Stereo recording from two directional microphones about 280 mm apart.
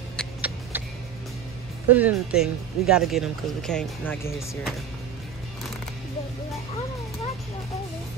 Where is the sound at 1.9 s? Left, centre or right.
Centre.